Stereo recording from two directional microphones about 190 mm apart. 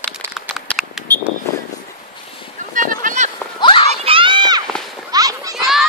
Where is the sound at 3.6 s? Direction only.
25° left (ahead or behind).